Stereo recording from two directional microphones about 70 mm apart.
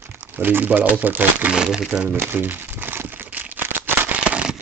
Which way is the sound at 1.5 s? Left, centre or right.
Centre.